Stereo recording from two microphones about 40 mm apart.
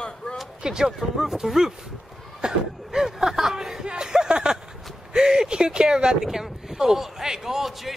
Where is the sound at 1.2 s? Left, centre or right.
Centre.